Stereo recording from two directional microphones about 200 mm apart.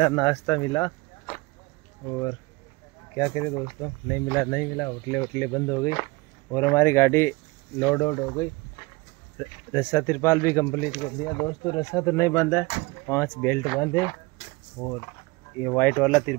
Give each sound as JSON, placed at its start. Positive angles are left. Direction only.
{"t": 0.0, "sound": "speech", "side_deg": 20}
{"t": 3.2, "sound": "speech", "side_deg": 15}
{"t": 9.4, "sound": "speech", "side_deg": 10}